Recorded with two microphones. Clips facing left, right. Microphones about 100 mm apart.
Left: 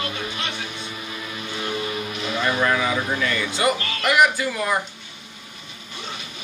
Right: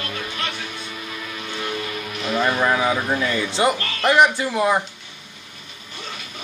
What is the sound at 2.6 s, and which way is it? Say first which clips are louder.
Speech: right 2 dB; 30° right (ahead or behind).